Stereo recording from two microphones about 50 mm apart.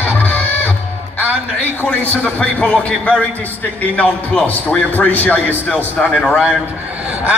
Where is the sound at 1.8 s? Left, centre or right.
Left.